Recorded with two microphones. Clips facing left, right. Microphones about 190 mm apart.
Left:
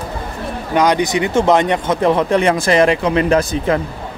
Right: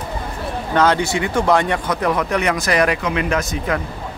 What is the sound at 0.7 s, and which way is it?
Speech, 15° left (ahead or behind).